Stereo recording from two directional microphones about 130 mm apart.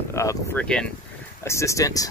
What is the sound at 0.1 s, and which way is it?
Speech, 20° left (ahead or behind).